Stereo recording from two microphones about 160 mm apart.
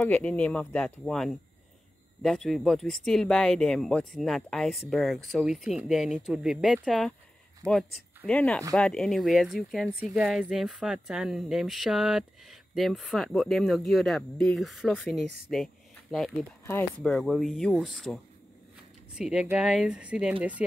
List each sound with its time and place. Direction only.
0.0 s speech: 10° left (ahead or behind)
7.6 s speech: 20° right (ahead or behind)
8.3 s speech: 5° left (ahead or behind)